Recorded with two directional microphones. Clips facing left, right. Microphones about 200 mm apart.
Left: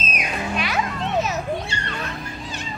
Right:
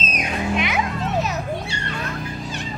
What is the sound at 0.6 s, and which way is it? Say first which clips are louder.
Children playing: even; 20° right (ahead or behind).